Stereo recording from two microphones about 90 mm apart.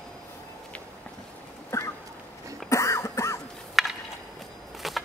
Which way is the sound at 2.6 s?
35° left (ahead or behind).